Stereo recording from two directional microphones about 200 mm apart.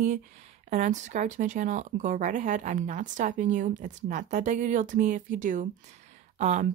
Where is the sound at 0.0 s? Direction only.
35° right (ahead or behind).